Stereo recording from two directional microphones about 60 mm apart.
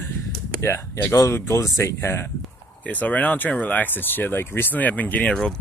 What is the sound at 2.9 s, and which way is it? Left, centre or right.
Speech, left.